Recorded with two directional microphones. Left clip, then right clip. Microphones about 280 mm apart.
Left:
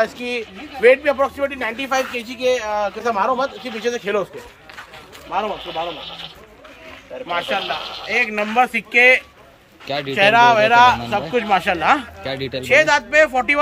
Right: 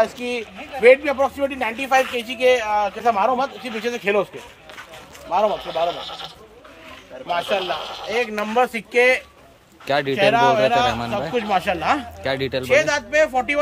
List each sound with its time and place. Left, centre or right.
0.0 s speech: right
5.3 s speech: right
5.9 s a man's voice: right
7.4 s a man's voice: right
8.2 s a man's voice: centre